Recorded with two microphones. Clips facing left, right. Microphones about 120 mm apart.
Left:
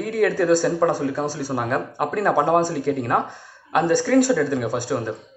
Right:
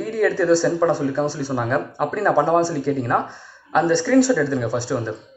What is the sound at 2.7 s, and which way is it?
Speech, 55° left (ahead or behind).